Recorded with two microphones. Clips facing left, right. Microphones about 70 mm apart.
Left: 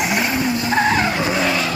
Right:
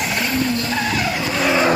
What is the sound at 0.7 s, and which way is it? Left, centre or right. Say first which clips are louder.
Vehicle: left 4 dB; left.